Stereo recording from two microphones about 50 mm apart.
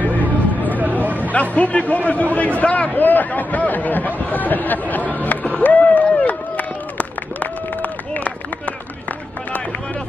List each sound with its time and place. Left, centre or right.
0.0 s vehicle: left
1.0 s a sound: right
1.3 s a man's voice: left
6.2 s run: left